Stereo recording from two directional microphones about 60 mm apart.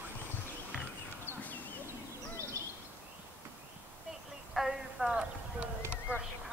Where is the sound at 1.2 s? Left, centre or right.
Left.